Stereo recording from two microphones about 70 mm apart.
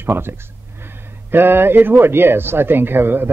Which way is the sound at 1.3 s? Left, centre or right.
Right.